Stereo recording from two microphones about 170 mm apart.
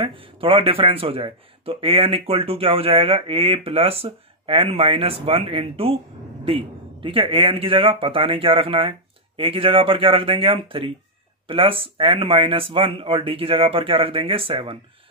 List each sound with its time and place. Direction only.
0.0 s a man's voice: 30° right (ahead or behind)